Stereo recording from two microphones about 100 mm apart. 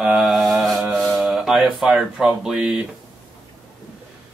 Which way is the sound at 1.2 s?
5° right (ahead or behind).